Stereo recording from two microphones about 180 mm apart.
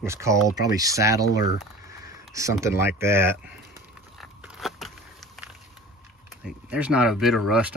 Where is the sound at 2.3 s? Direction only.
15° right (ahead or behind).